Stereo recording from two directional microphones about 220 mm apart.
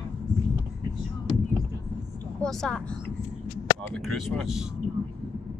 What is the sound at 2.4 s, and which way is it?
Speech, centre (ahead or behind).